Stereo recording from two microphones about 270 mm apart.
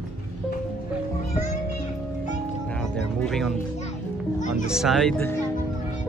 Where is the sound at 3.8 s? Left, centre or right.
Left.